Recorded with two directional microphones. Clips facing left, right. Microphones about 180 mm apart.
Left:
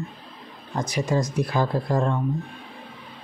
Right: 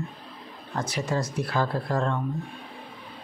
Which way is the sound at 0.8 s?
15° left (ahead or behind).